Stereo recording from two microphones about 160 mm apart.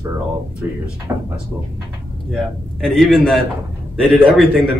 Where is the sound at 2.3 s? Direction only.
Centre (ahead or behind).